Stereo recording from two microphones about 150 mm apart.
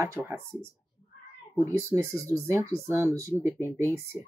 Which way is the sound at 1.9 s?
10° right (ahead or behind).